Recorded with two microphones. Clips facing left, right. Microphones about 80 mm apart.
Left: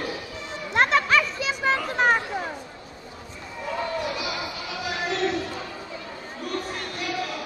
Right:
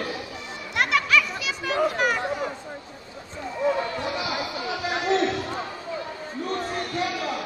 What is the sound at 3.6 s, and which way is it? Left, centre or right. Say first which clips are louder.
Basketball bounce: right 8 dB; right.